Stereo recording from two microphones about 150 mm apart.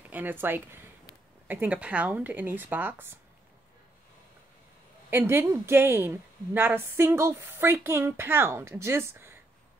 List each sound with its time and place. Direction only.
0.1 s a woman's voice: 10° right (ahead or behind)
5.1 s a woman's voice: 15° right (ahead or behind)